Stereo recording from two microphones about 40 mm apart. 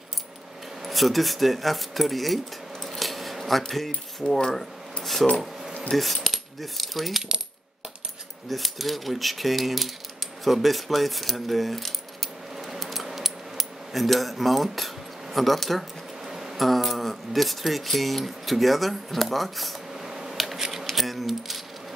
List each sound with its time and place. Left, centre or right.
0.8 s speech: centre
4.2 s speech: centre
5.4 s a sound: centre
6.2 s speech: centre
8.5 s speech: centre
12.5 s keys jangling: centre
15.3 s speech: centre
16.3 s a sound: centre
16.5 s speech: centre
19.9 s a sound: centre
20.3 s scissors: centre
20.8 s keys jangling: centre